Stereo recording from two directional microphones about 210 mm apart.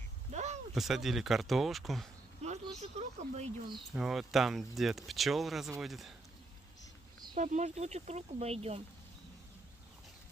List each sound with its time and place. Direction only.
0.3 s a sound: 30° right (ahead or behind)
0.7 s speech: centre (ahead or behind)
2.4 s a sound: 30° right (ahead or behind)
3.0 s speech: 25° right (ahead or behind)
3.9 s speech: centre (ahead or behind)
7.3 s speech: 35° right (ahead or behind)